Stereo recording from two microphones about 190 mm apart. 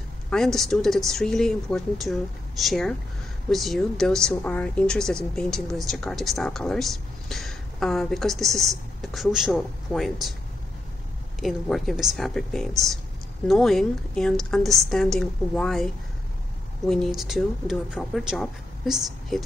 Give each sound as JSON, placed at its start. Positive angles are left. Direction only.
{"t": 0.3, "sound": "speech", "side_deg": 0}
{"t": 11.4, "sound": "speech", "side_deg": 0}